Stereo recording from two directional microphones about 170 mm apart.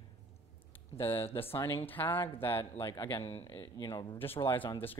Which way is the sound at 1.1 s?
35° left (ahead or behind).